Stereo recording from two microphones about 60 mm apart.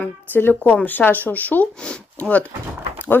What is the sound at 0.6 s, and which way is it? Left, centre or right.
Speech, left.